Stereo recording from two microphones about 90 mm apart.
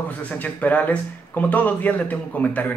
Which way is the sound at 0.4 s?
15° left (ahead or behind).